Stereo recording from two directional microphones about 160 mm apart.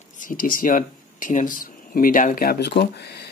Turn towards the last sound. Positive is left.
turn(degrees=90)